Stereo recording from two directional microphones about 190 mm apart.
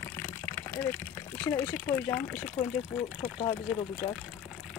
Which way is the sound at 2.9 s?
5° left (ahead or behind).